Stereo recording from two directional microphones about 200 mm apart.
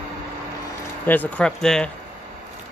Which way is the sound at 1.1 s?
10° left (ahead or behind).